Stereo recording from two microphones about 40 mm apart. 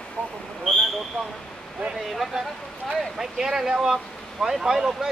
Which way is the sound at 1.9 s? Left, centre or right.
Centre.